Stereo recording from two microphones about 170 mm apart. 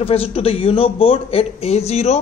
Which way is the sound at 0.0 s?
35° left (ahead or behind).